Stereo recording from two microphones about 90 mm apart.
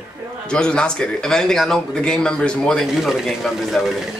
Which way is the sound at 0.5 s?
10° left (ahead or behind).